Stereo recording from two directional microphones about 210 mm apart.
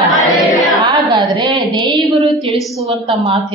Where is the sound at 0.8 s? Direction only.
20° right (ahead or behind).